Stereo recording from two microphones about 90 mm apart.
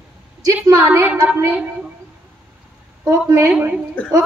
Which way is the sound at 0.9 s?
25° right (ahead or behind).